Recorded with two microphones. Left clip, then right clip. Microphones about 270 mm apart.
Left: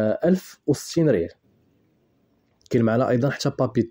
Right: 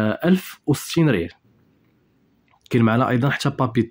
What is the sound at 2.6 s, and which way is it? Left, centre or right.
Speech, centre.